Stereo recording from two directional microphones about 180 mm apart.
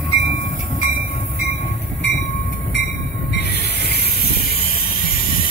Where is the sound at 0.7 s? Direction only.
35° left (ahead or behind).